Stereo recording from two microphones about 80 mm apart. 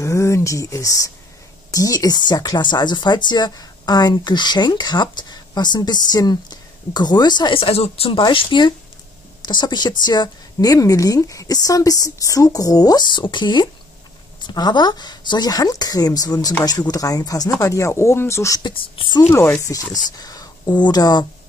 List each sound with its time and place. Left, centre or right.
0.0 s speech: left
8.2 s speech: left
9.5 s speech: left
13.0 s speech: left
17.6 s speech: left
18.6 s speech: left
19.3 s speech: left
19.6 s speech: left